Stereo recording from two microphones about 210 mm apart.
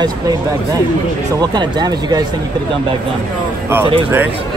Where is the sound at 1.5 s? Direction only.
20° right (ahead or behind).